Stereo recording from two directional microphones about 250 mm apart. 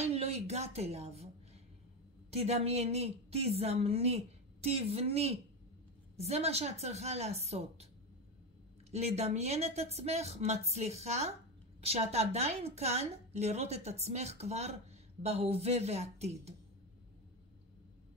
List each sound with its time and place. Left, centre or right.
0.0 s a sound: right
2.3 s a woman's voice: right
8.9 s a woman's voice: right